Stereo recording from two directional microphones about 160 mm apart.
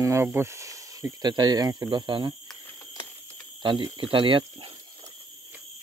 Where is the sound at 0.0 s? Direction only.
15° right (ahead or behind).